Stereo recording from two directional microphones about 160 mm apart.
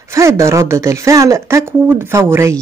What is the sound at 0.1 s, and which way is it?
A woman's voice, 20° right (ahead or behind).